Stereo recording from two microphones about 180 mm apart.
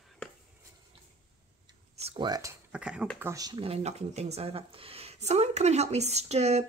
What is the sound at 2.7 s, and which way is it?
Speech, 5° right (ahead or behind).